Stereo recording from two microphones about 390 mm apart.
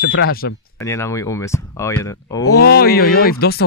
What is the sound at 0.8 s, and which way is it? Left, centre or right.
Speech, centre.